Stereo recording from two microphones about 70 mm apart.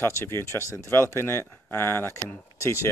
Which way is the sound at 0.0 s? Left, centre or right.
Left.